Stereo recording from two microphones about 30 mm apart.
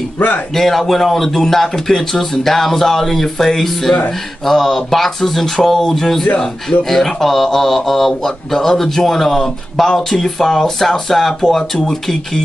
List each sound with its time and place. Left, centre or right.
0.6 s speech: centre